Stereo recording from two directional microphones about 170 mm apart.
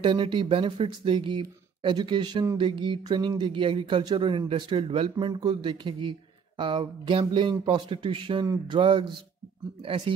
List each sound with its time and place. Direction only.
0.0 s speech: 30° right (ahead or behind)